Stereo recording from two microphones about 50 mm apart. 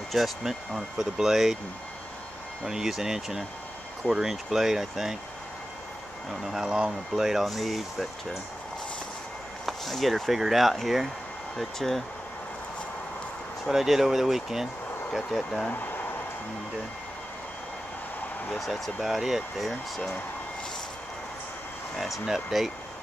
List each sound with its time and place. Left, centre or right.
0.1 s speech: centre
2.6 s speech: centre
6.4 s speech: centre
9.7 s speech: centre
13.7 s speech: centre
15.7 s a sound: left
18.5 s speech: centre
21.9 s speech: centre